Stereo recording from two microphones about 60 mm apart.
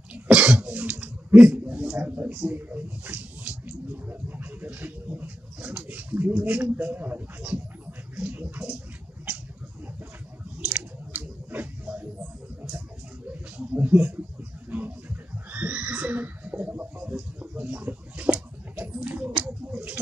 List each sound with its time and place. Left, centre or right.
0.1 s cough: centre
0.7 s a sound: right
1.4 s a man's voice: right
10.7 s squish: right
13.3 s speech: right
14.7 s neigh: right